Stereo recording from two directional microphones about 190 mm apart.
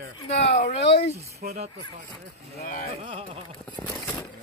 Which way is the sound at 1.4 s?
50° right (ahead or behind).